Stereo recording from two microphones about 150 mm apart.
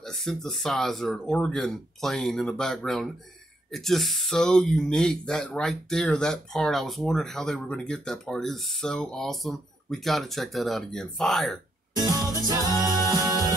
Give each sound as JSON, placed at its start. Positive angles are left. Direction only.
{"t": 0.0, "sound": "speech", "side_deg": 5}
{"t": 12.4, "sound": "music", "side_deg": -25}